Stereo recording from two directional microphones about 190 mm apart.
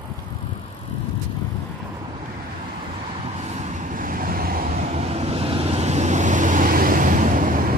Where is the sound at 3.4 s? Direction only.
40° right (ahead or behind).